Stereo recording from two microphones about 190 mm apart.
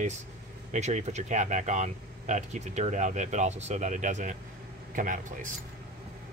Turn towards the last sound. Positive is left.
turn(degrees=-45)  # may be behind; listen again after turning